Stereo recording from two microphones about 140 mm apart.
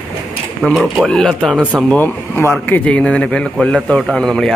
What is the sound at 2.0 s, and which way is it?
A man's voice, 15° left (ahead or behind).